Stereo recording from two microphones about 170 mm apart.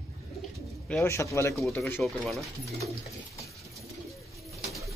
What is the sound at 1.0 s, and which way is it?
Speech, 15° left (ahead or behind).